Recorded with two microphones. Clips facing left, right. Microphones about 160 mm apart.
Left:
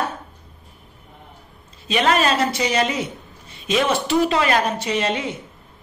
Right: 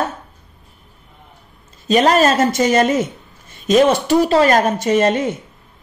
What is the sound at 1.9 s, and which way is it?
Speech, 40° right (ahead or behind).